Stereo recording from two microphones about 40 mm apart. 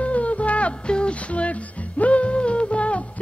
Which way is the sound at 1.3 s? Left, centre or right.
Left.